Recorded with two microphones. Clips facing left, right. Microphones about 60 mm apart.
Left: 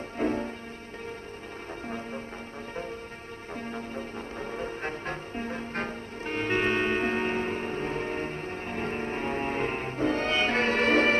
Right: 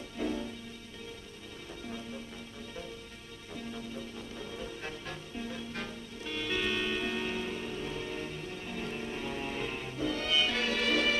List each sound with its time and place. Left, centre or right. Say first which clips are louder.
0.2 s music: left 6 dB; left
3.5 s music: left 5 dB; left